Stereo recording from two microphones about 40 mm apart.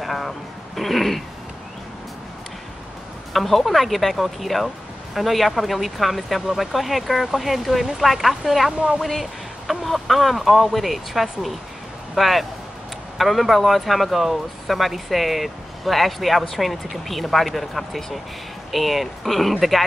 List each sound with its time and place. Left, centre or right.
0.0 s music: centre
0.7 s speech: centre
3.3 s speech: centre
8.7 s speech: right
9.0 s speech: centre